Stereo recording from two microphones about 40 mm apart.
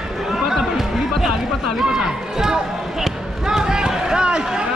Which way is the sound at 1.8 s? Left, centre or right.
Centre.